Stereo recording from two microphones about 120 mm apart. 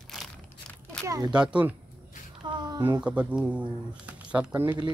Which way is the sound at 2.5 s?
35° right (ahead or behind).